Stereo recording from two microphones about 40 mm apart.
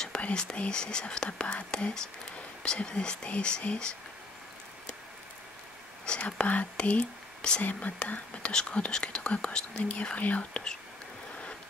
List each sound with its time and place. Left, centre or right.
0.3 s speech: left
6.0 s speech: left
7.6 s speech: left
10.1 s speech: left